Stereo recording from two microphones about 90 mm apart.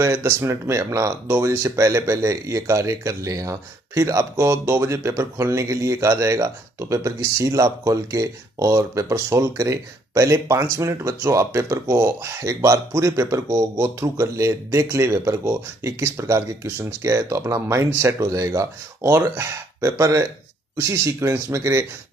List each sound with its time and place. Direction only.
0.0 s speech: 30° right (ahead or behind)